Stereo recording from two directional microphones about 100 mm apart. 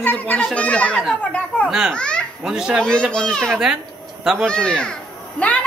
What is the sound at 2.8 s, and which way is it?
A child's voice, 10° left (ahead or behind).